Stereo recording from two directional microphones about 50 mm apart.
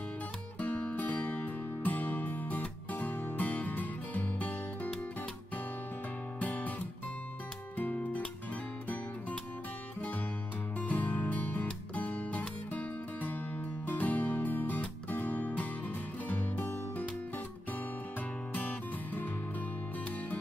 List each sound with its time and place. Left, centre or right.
0.6 s music: left
6.4 s music: left
7.7 s music: left
10.8 s music: left
18.5 s music: left